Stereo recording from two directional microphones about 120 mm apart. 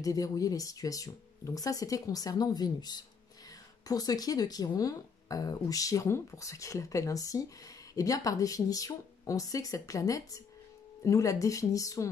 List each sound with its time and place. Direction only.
0.0 s speech: 30° left (ahead or behind)